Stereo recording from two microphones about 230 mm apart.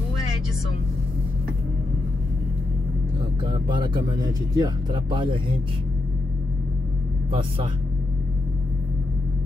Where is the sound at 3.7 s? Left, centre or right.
Centre.